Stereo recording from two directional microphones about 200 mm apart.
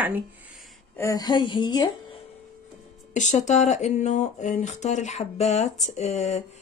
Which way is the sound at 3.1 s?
35° left (ahead or behind).